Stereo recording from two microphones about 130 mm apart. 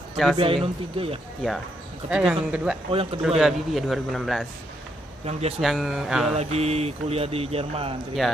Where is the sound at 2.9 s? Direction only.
45° right (ahead or behind).